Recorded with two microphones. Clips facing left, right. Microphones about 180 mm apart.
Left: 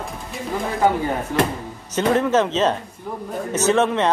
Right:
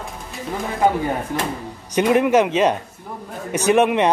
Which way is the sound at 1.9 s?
15° right (ahead or behind).